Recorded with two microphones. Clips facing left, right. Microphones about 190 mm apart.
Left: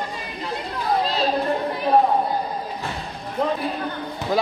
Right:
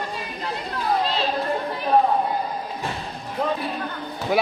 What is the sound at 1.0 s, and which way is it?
Children playing, 40° left (ahead or behind).